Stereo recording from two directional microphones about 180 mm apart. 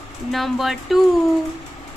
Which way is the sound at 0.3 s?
Centre (ahead or behind).